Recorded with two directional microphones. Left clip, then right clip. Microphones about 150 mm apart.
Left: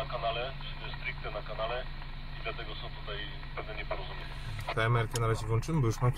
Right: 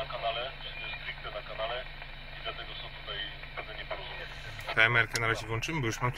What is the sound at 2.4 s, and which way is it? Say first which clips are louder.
Speech: even; 20° left (ahead or behind).